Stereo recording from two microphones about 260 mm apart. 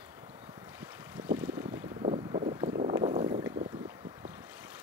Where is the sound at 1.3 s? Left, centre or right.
Centre.